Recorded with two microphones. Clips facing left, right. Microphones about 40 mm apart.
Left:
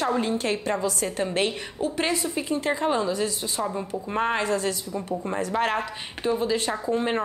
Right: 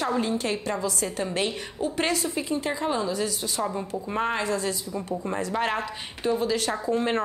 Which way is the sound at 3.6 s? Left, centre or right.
Centre.